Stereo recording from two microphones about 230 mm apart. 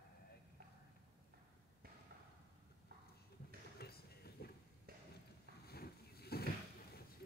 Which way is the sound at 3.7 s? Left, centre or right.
Left.